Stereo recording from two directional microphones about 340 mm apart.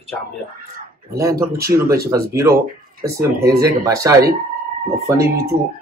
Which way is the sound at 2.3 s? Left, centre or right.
Centre.